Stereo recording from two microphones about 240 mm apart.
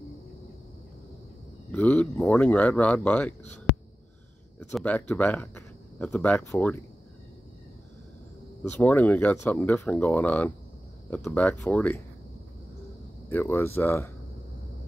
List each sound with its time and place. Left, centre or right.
1.7 s speech: centre
4.6 s speech: centre
8.6 s speech: centre
13.3 s speech: centre